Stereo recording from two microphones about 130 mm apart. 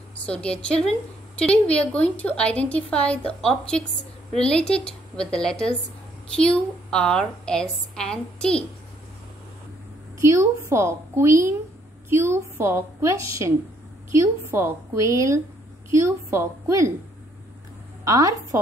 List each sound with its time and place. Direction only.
0.2 s a woman's voice: 10° left (ahead or behind)
10.1 s a woman's voice: 20° right (ahead or behind)
18.0 s a woman's voice: 25° right (ahead or behind)